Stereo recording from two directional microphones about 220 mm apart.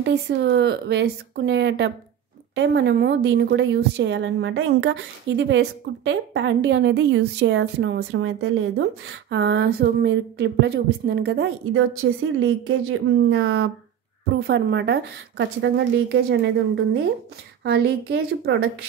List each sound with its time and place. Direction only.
0.0 s a woman's voice: 50° right (ahead or behind); by 8.5 s 65° right (ahead or behind)
8.7 s a woman's voice: 55° right (ahead or behind)
11.9 s speech: 65° right (ahead or behind)
14.3 s a woman's voice: 50° right (ahead or behind)